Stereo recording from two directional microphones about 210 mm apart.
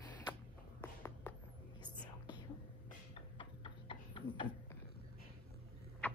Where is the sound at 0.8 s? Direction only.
10° left (ahead or behind).